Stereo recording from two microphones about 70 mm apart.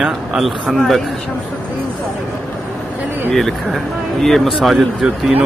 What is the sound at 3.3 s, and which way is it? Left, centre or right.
Speech, centre.